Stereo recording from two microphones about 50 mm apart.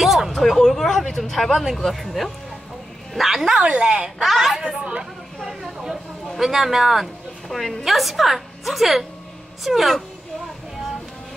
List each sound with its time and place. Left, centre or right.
0.0 s a woman's voice: centre
3.6 s a woman's voice: right
4.2 s a woman's voice: centre
4.6 s a woman's voice: centre
5.4 s a sound: centre
6.3 s a woman's voice: centre